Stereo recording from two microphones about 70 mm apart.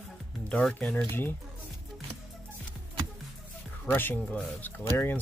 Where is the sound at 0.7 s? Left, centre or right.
Left.